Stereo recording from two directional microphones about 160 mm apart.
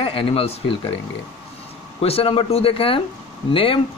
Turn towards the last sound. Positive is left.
turn(degrees=35)  # may be behind; listen again after turning